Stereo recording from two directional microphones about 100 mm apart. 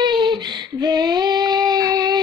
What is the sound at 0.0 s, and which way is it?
Child singing, 50° right (ahead or behind).